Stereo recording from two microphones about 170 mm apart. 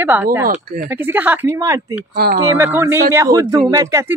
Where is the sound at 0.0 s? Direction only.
10° right (ahead or behind).